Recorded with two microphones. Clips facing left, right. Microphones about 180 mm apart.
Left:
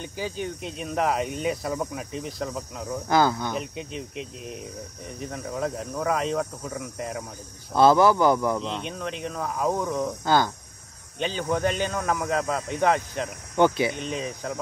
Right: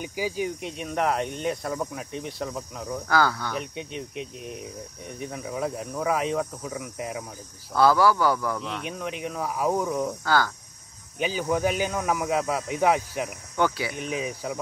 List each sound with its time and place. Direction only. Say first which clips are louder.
0.0 s speech: right 3 dB; 10° right (ahead or behind)
3.1 s speech: left 2 dB; 20° left (ahead or behind)
3.5 s speech: left 1 dB; centre (ahead or behind)
7.7 s speech: left 2 dB; 20° left (ahead or behind)
8.8 s speech: even; 5° right (ahead or behind)
10.2 s speech: left 3 dB; 20° left (ahead or behind)
11.1 s speech: right 1 dB; 5° right (ahead or behind)
13.6 s speech: left 5 dB; 20° left (ahead or behind)
13.9 s speech: right 1 dB; 5° right (ahead or behind)